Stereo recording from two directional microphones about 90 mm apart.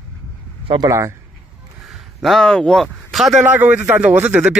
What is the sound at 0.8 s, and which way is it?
Speech, 35° right (ahead or behind).